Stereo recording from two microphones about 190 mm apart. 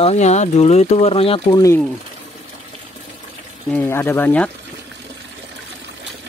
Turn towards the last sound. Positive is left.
turn(degrees=10)  # may be behind; listen again after turning